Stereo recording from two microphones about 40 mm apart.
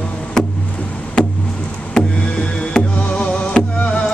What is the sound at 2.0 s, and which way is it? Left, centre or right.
Music, centre.